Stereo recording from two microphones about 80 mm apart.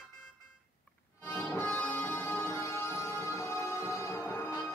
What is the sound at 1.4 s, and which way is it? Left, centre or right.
Music, left.